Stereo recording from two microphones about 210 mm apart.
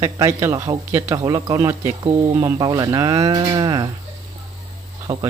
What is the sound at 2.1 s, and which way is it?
Speech, 15° right (ahead or behind).